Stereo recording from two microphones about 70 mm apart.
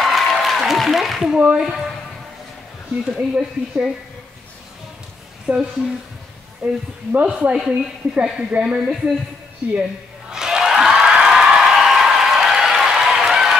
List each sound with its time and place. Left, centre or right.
0.0 s applause: centre
1.3 s a woman's voice: centre
3.2 s a woman's voice: centre
5.5 s a woman's voice: centre
6.6 s speech: right
7.5 s a woman's voice: centre
10.3 s a sound: centre